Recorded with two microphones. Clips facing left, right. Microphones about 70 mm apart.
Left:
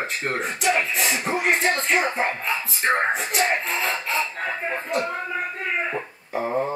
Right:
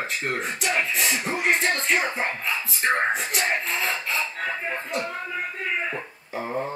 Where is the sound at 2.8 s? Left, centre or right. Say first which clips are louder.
Left 1 dB; left.